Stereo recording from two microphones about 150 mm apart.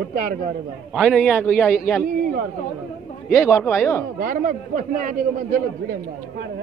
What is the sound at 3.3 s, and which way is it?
Speech, 20° left (ahead or behind).